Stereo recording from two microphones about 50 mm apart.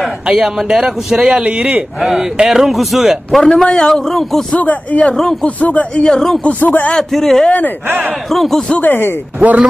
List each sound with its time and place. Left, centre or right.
0.3 s a man's voice: centre
3.6 s speech: centre
3.9 s a man's voice: centre
4.6 s speech: left
5.1 s speech: centre
5.6 s speech: left
6.0 s speech: centre
6.6 s speech: left
7.1 s a man's voice: centre
8.8 s speech: left
9.4 s speech: right